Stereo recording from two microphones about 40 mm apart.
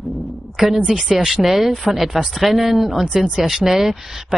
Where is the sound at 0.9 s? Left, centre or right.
Centre.